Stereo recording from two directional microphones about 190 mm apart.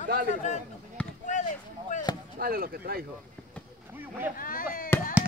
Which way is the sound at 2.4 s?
50° right (ahead or behind).